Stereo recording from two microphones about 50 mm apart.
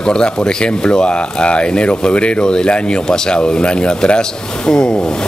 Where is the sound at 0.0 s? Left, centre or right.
Centre.